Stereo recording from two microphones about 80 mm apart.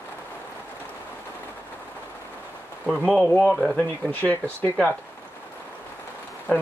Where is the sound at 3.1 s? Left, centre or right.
Centre.